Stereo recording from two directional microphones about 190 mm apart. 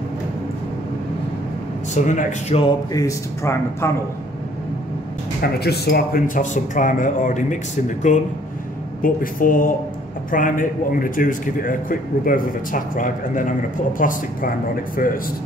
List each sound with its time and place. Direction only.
2.0 s speech: 40° left (ahead or behind)
2.6 s speech: 20° left (ahead or behind)
5.4 s a man's voice: 55° left (ahead or behind)